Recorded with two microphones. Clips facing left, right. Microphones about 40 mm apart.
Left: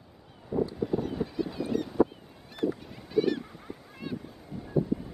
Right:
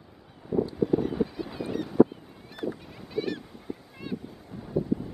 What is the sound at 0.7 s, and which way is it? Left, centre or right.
Honk, centre.